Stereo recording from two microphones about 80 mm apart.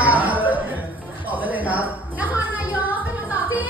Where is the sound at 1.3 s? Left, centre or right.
Right.